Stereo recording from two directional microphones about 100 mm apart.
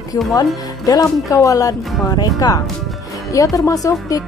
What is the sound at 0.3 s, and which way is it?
A woman's voice, 40° left (ahead or behind).